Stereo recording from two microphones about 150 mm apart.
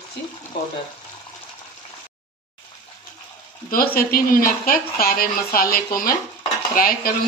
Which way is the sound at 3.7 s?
75° left (ahead or behind).